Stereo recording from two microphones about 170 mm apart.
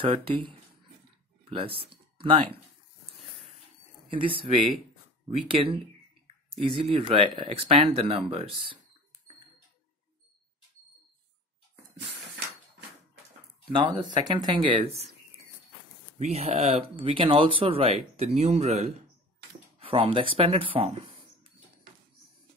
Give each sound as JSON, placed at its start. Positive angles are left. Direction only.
{"t": 0.0, "sound": "speech", "side_deg": -30}
{"t": 2.1, "sound": "speech", "side_deg": -30}
{"t": 4.1, "sound": "speech", "side_deg": -30}
{"t": 13.7, "sound": "speech", "side_deg": -30}
{"t": 16.2, "sound": "speech", "side_deg": -35}